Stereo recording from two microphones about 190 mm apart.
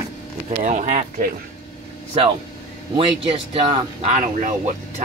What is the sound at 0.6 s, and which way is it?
Speech, 40° right (ahead or behind).